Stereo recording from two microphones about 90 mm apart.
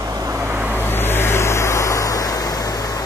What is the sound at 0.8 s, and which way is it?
Vehicle, 25° left (ahead or behind).